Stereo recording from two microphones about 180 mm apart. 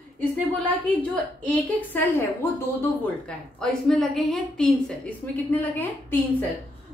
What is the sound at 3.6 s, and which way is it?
A woman's voice, 5° left (ahead or behind).